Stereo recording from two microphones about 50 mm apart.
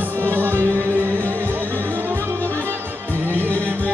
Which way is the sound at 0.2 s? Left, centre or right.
Right.